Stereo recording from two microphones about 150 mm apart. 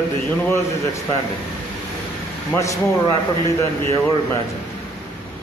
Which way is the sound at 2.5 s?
20° left (ahead or behind).